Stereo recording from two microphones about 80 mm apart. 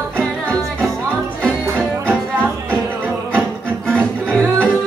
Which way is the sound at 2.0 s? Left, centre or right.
Centre.